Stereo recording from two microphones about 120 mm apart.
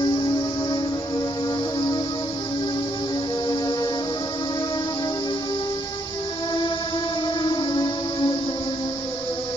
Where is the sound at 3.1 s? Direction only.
35° left (ahead or behind).